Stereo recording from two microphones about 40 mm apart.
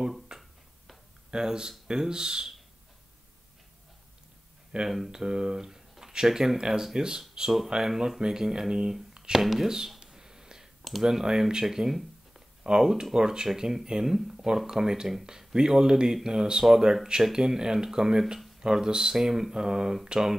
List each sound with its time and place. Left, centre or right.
0.3 s a sound: centre
1.3 s speech: centre
4.8 s speech: centre
10.8 s computer keyboard: centre
11.1 s speech: centre